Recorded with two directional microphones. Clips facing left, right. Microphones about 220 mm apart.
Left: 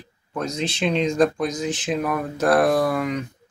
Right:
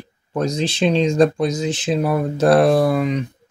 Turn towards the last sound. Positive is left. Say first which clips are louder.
# right 4 dB
turn(degrees=-20)  # may be behind; listen again after turning